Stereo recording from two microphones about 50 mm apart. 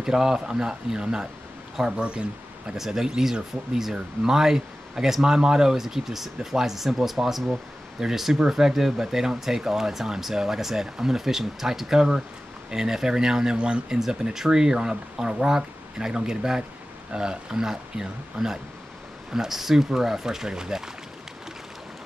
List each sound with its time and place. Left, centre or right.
0.0 s speech: centre
2.8 s speech: centre